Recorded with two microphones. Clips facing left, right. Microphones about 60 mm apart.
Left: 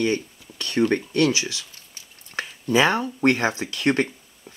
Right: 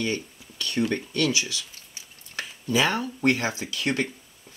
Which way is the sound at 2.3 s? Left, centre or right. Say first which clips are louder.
Left 4 dB; left.